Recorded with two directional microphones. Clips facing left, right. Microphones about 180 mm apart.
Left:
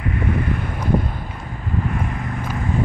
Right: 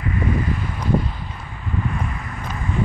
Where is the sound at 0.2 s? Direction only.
60° left (ahead or behind).